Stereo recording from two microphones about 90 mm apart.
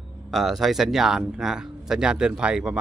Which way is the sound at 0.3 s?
Centre (ahead or behind).